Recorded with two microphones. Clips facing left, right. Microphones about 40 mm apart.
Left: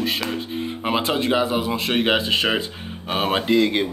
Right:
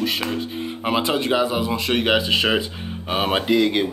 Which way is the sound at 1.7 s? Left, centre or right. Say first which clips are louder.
Even; centre.